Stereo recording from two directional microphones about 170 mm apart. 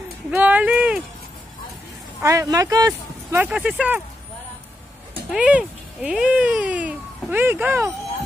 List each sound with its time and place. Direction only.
0.3 s speech: 10° right (ahead or behind)
2.2 s speech: 20° right (ahead or behind)
2.9 s speech: 10° right (ahead or behind)
5.3 s speech: 5° right (ahead or behind)